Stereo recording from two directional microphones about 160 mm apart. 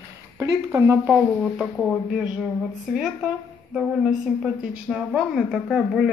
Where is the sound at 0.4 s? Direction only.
20° right (ahead or behind).